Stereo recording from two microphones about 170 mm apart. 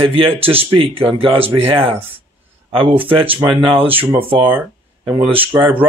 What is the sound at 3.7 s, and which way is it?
Speech, 10° right (ahead or behind).